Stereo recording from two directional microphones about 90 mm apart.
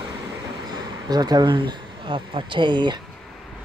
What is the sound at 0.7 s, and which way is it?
Speech, 50° right (ahead or behind).